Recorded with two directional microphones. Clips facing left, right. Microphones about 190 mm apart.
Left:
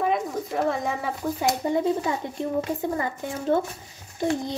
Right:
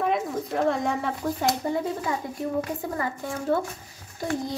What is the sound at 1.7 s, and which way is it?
A child's voice, 20° left (ahead or behind).